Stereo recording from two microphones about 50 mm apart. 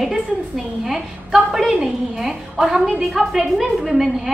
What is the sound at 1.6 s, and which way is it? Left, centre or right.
A woman's voice, centre.